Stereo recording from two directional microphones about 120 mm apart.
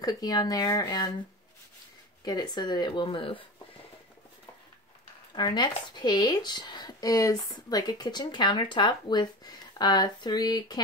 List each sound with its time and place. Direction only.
0.0 s speech: 35° left (ahead or behind)
2.2 s speech: 35° left (ahead or behind)
5.3 s speech: 40° left (ahead or behind)